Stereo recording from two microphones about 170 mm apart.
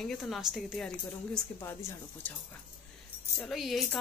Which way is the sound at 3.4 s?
Centre (ahead or behind).